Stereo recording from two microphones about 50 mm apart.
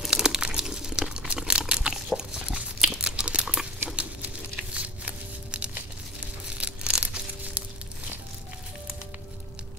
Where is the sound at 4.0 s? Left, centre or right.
Right.